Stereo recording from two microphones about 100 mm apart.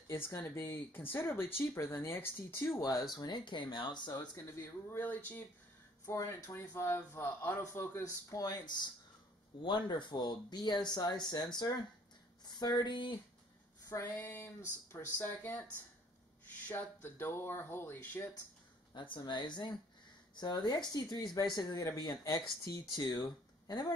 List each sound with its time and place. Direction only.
0.1 s speech: 25° left (ahead or behind)
3.2 s speech: 45° left (ahead or behind)
4.5 s speech: 25° left (ahead or behind); by 11.8 s 45° left (ahead or behind)
12.4 s a sound: 45° left (ahead or behind)
13.9 s speech: 30° left (ahead or behind)
16.6 s speech: 20° left (ahead or behind)
18.9 s speech: 50° left (ahead or behind)